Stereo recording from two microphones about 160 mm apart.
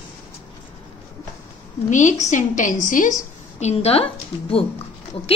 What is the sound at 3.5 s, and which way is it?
A woman's voice, 40° left (ahead or behind).